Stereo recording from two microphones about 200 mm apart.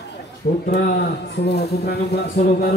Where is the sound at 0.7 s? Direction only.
50° left (ahead or behind).